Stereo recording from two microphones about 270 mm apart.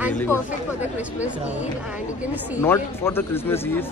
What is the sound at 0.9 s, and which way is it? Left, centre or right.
Speech, centre.